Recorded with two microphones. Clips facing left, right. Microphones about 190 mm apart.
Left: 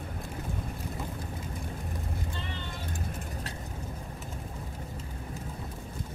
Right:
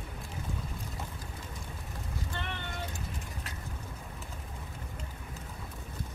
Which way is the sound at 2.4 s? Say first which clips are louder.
Even; 60° right (ahead or behind).